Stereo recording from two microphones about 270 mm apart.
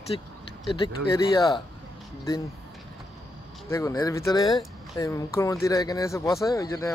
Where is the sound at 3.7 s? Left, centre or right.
Centre.